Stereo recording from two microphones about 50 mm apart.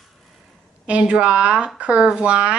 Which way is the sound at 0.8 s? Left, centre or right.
Right.